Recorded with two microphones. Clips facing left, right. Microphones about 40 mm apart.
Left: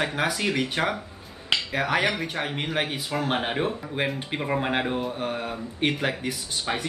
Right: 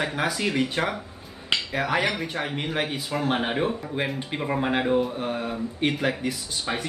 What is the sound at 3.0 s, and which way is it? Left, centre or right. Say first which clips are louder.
Speech: right 1 dB; centre.